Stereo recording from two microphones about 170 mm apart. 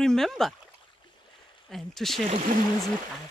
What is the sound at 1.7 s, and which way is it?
Speech, centre (ahead or behind).